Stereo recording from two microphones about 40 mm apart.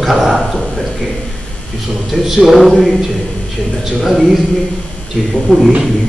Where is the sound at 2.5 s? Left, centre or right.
Centre.